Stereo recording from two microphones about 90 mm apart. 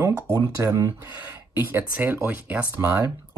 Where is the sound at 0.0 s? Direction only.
30° right (ahead or behind).